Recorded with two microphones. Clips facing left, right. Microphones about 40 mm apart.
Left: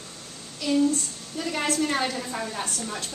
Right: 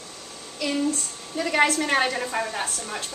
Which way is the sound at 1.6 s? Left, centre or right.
Right.